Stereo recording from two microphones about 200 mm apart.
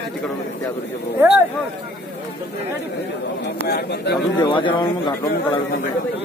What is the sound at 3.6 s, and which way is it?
Speech, 55° left (ahead or behind).